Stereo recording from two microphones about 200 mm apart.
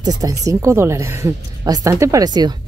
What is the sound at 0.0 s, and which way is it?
Speech, 20° right (ahead or behind).